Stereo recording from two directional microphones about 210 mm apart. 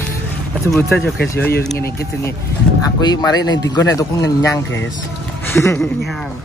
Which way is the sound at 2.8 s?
20° left (ahead or behind).